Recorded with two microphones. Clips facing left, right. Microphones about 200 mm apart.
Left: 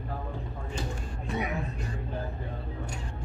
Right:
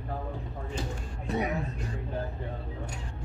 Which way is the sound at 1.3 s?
35° right (ahead or behind).